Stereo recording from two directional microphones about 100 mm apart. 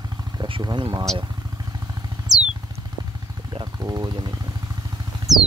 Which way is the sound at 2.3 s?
40° right (ahead or behind).